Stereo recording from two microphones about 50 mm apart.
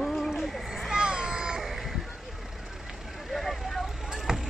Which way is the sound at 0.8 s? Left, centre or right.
Centre.